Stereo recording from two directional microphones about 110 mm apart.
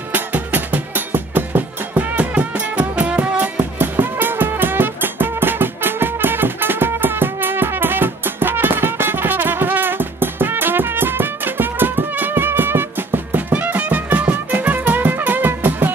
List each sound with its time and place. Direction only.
0.1 s music: 15° right (ahead or behind)